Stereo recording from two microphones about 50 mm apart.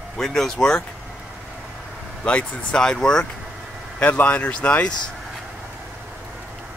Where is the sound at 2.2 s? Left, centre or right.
Left.